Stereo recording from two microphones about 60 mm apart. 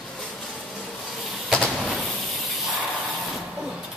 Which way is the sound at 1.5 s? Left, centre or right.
Centre.